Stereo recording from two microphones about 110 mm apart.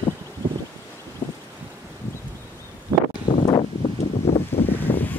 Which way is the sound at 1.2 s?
45° left (ahead or behind).